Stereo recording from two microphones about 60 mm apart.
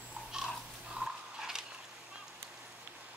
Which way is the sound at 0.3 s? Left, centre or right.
Centre.